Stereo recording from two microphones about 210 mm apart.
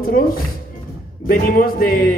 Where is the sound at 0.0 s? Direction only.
45° left (ahead or behind).